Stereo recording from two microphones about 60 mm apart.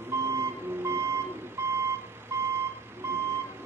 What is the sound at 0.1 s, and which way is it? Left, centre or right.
Reversing beeps, right.